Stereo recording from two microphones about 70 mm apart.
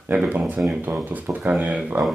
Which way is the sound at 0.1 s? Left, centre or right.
Centre.